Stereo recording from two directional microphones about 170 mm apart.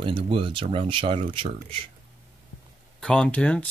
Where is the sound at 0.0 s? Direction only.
30° right (ahead or behind).